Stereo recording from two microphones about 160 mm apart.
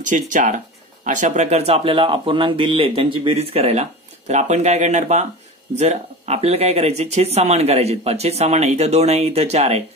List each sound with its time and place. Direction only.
0.0 s speech: 55° right (ahead or behind)